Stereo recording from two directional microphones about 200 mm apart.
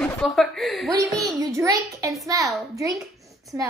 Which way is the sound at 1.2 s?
15° right (ahead or behind).